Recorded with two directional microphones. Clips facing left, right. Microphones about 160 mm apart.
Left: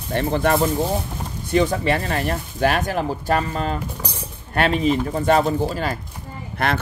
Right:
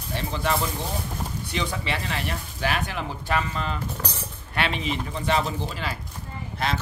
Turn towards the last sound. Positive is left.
turn(degrees=60)  # may be behind; listen again after turning